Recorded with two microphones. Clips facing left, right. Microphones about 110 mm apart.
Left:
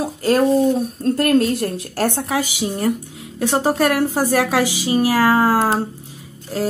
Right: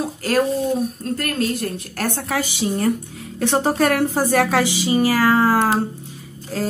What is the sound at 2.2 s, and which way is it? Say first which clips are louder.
Speech: left 1 dB; 10° left (ahead or behind).